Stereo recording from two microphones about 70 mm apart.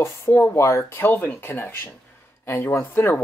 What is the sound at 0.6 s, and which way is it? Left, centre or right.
Speech, left.